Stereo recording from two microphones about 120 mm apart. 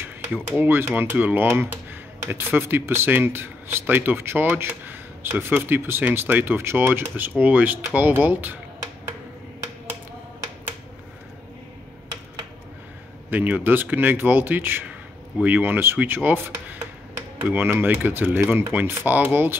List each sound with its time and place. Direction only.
0.6 s speech: 20° right (ahead or behind)
13.3 s speech: 15° right (ahead or behind)